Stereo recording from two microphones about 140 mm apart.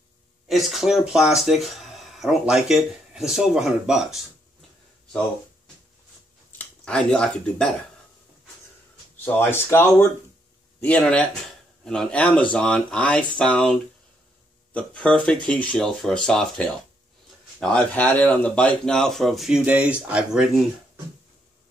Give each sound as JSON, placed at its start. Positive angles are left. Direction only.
{"t": 0.5, "sound": "speech", "side_deg": 0}
{"t": 6.6, "sound": "speech", "side_deg": 5}
{"t": 9.2, "sound": "speech", "side_deg": 15}